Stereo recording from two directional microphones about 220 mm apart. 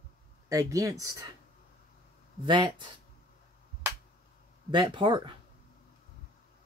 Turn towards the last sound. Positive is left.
turn(degrees=-20)  # may be behind; listen again after turning